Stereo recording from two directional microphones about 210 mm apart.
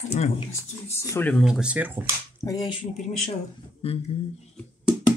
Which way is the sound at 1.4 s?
5° right (ahead or behind).